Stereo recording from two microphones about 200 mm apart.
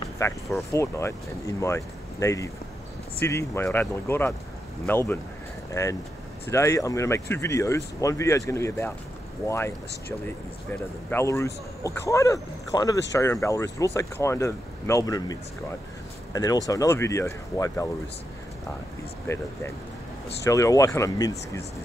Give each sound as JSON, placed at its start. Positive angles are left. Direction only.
{"t": 0.2, "sound": "speech", "side_deg": 15}
{"t": 10.2, "sound": "speech", "side_deg": 10}
{"t": 16.6, "sound": "speech", "side_deg": 15}
{"t": 19.2, "sound": "speech", "side_deg": 15}